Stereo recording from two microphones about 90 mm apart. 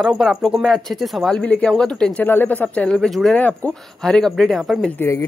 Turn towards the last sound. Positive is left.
turn(degrees=25)  # may be behind; listen again after turning